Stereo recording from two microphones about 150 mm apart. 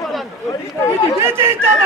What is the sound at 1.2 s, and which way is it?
Speech, 15° right (ahead or behind).